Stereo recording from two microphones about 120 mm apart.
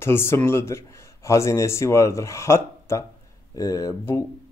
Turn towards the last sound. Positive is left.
turn(degrees=25)  # may be behind; listen again after turning